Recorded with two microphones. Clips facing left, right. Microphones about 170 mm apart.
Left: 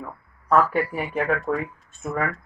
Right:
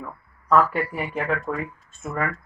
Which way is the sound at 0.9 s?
15° left (ahead or behind).